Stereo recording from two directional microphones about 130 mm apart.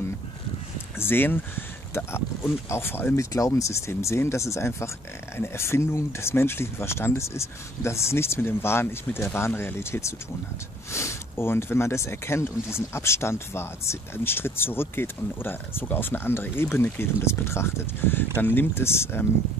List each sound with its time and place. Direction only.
0.9 s speech: 15° left (ahead or behind)